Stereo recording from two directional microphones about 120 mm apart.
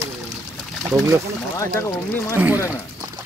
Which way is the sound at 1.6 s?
25° left (ahead or behind).